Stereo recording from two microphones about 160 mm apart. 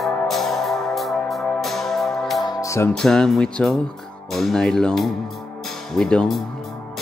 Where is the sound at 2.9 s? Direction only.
5° left (ahead or behind).